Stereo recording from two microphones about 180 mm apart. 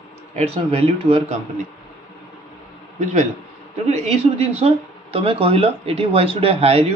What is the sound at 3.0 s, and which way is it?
A man's voice, 40° right (ahead or behind).